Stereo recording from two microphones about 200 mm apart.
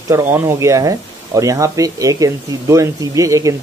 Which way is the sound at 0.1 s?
10° right (ahead or behind).